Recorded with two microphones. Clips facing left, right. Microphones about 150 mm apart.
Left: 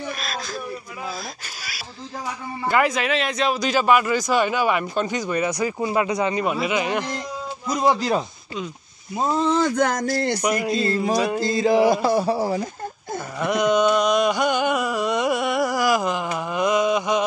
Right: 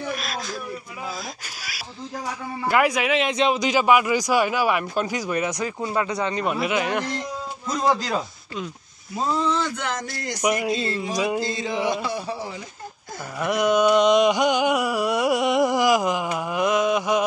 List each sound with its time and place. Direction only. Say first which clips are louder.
0.1 s a sound: right 1 dB; 10° right (ahead or behind)
2.6 s a man's voice: even; 5° right (ahead or behind)
3.3 s speech: right 1 dB; 20° right (ahead or behind); by 7.1 s centre (ahead or behind)
7.7 s speech: left 2 dB; 20° left (ahead or behind)
9.1 s speech: left 3 dB; 25° left (ahead or behind)
10.4 s a man's voice: even; 10° right (ahead or behind)
10.8 s speech: left 4 dB; 40° left (ahead or behind)
13.4 s speech: even; 5° right (ahead or behind)
13.9 s a sound: right 2 dB; 20° right (ahead or behind); by 17.2 s 5° right (ahead or behind)